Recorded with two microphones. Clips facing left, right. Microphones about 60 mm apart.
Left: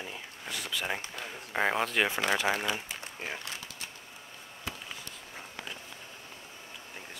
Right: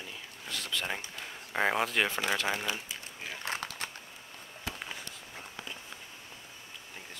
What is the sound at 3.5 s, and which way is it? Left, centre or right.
Typing, right.